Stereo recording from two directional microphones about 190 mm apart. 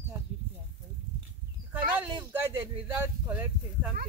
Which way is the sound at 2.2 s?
25° right (ahead or behind).